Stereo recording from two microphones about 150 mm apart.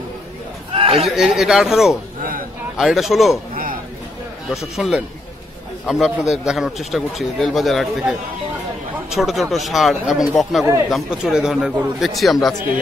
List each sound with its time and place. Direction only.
0.7 s a sound: 40° right (ahead or behind)
1.0 s a man's voice: centre (ahead or behind)
4.7 s a man's voice: centre (ahead or behind)